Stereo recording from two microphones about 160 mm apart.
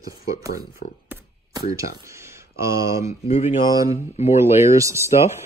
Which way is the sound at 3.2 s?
40° left (ahead or behind).